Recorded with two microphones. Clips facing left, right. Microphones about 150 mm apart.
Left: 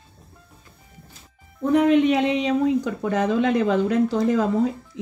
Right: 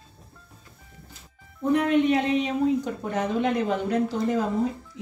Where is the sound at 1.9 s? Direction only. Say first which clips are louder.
Left 3 dB; 90° left.